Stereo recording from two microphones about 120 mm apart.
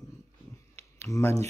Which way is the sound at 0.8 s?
25° left (ahead or behind).